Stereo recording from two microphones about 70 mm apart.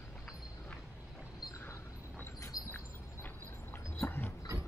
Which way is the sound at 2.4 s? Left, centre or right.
Left.